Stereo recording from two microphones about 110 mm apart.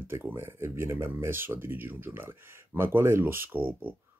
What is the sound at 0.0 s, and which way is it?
Speech, 20° right (ahead or behind).